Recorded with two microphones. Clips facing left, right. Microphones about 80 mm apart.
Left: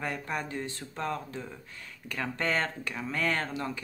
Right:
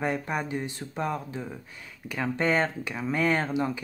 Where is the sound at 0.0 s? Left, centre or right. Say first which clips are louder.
Right 5 dB; right.